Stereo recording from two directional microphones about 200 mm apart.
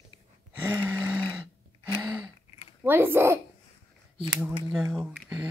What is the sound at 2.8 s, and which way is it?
Speech, 10° right (ahead or behind).